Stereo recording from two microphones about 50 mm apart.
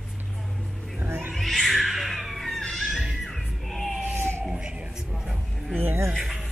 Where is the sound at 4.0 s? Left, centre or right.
Right.